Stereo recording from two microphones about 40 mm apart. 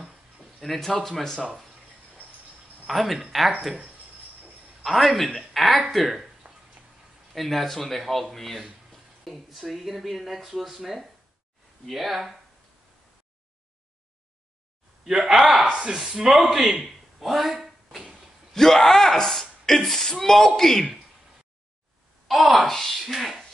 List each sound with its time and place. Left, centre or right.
0.0 s a sound: centre
0.6 s speech: centre
2.2 s a sound: left
2.9 s speech: centre
4.8 s speech: centre
7.3 s speech: centre
15.0 s speech: centre
15.6 s speech: right; by 20.8 s centre
22.3 s speech: centre